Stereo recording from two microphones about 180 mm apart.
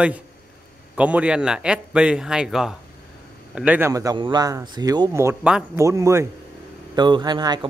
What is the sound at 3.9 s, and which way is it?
Speech, 20° right (ahead or behind).